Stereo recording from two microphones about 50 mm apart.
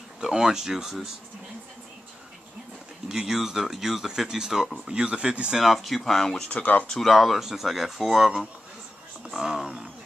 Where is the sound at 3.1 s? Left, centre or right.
Centre.